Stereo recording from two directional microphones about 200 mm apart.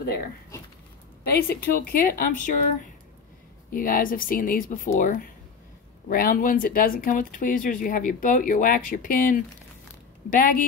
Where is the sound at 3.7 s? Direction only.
45° left (ahead or behind).